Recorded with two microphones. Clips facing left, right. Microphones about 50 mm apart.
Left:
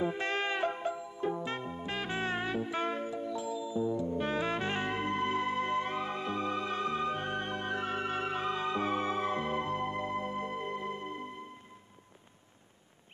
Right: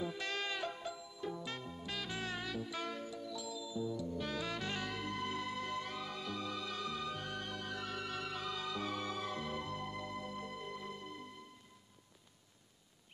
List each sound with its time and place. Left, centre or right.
0.0 s music: left